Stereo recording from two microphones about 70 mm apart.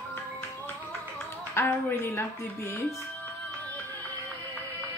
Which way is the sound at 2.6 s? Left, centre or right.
Left.